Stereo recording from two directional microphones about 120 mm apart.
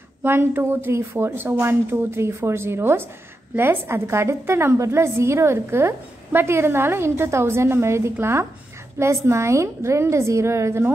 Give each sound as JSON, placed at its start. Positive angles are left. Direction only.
{"t": 0.2, "sound": "a woman's voice", "side_deg": -20}